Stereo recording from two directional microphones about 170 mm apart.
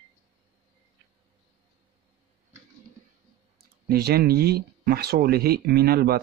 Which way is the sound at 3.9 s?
65° right (ahead or behind).